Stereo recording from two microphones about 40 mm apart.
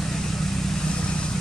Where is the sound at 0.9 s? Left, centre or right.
Left.